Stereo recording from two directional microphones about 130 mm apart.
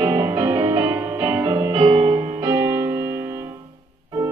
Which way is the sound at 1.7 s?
35° right (ahead or behind).